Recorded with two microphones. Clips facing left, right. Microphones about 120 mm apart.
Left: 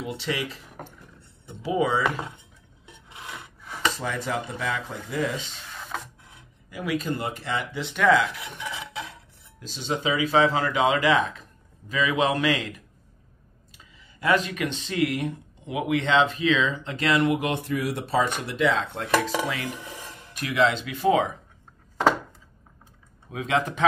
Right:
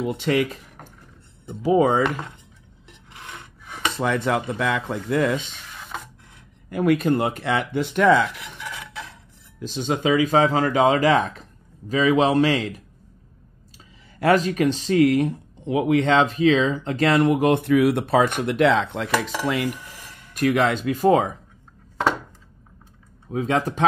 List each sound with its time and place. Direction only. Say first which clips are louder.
0.0 s speech: right 8 dB; 50° right (ahead or behind)
3.9 s speech: right 7 dB; 65° right (ahead or behind)
6.7 s speech: right 9 dB; 55° right (ahead or behind)
8.6 s filing: left 1 dB; 10° left (ahead or behind)
9.6 s speech: right 5 dB; 55° right (ahead or behind)
14.2 s speech: right 6 dB; 40° right (ahead or behind)
23.3 s speech: right 3 dB; 35° right (ahead or behind)